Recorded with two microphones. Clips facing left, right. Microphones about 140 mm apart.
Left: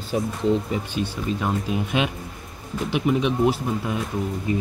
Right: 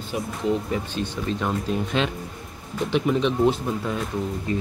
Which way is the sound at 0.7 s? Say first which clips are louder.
Left 1 dB; 10° left (ahead or behind).